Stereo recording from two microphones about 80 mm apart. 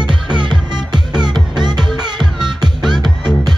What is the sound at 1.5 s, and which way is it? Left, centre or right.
Music, right.